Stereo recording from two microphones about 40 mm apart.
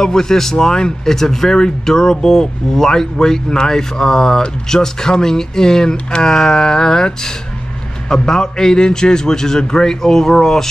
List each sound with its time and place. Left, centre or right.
0.0 s speech: centre